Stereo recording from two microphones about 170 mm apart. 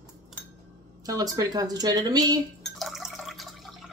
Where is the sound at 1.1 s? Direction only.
20° right (ahead or behind).